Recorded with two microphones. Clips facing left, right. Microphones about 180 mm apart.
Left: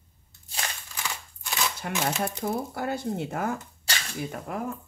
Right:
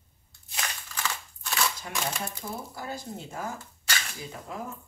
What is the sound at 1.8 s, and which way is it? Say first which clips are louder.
Speech: left 5 dB; 65° left (ahead or behind).